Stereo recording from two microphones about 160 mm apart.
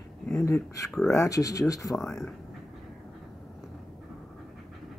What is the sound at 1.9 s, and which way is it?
Speech, 5° left (ahead or behind).